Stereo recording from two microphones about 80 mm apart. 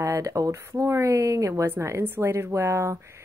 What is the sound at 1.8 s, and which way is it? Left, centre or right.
A woman's voice, right.